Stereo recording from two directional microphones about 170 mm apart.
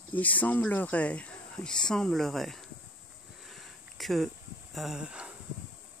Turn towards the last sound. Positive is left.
turn(degrees=-5)  # may be behind; listen again after turning